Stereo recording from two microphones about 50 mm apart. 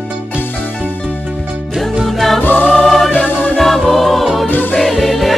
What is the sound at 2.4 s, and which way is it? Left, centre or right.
Music, left.